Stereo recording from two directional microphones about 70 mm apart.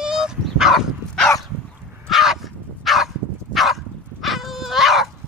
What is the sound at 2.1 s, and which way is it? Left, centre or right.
Dog, centre.